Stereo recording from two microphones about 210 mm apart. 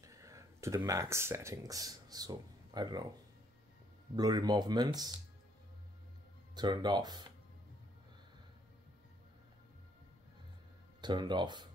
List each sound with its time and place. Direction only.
0.0 s speech: 15° right (ahead or behind)
4.1 s speech: 20° right (ahead or behind)
6.5 s speech: 20° right (ahead or behind)
11.0 s speech: 20° right (ahead or behind)